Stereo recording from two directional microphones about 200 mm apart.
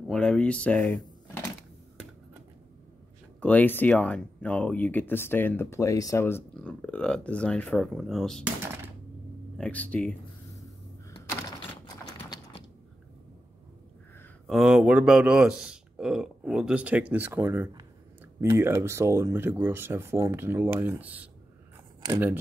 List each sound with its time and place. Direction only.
0.1 s speech: 5° left (ahead or behind)
3.3 s speech: 5° left (ahead or behind)
9.6 s speech: 5° left (ahead or behind)
11.8 s clip-clop: 25° left (ahead or behind)
14.5 s speech: centre (ahead or behind)